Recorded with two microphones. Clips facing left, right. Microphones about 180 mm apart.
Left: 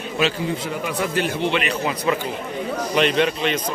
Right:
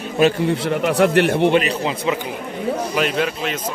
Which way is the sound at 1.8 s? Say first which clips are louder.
Right 1 dB; 25° right (ahead or behind).